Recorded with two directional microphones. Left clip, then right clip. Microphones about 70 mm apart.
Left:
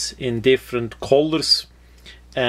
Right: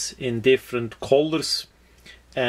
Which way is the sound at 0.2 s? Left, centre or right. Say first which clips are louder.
Left 2 dB; left.